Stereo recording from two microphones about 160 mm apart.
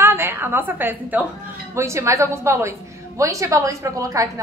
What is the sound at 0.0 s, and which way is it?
A woman's voice, 15° right (ahead or behind).